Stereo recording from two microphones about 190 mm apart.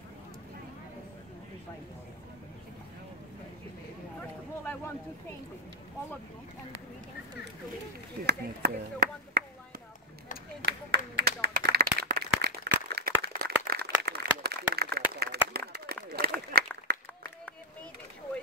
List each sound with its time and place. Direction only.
8.3 s chop: 55° right (ahead or behind)
10.6 s clapping: 60° right (ahead or behind)
12.4 s a sound: 60° right (ahead or behind)